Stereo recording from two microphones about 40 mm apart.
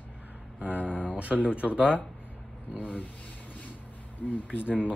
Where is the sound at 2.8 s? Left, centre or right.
Left.